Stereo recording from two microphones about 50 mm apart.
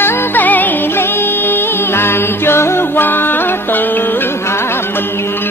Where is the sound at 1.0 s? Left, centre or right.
Left.